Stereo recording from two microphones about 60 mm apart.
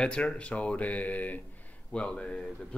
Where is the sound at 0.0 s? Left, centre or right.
Centre.